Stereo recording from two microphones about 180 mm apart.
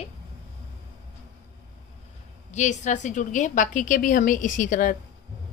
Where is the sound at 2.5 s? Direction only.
40° left (ahead or behind).